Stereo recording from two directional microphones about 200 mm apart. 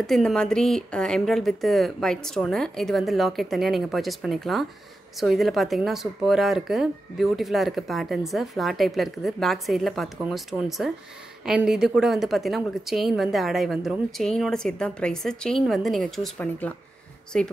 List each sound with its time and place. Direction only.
0.0 s speech: centre (ahead or behind)